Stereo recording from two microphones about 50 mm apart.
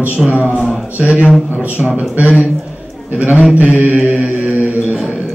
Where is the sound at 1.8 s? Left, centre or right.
Right.